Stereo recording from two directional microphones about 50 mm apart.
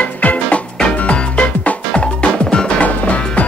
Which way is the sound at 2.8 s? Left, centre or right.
Left.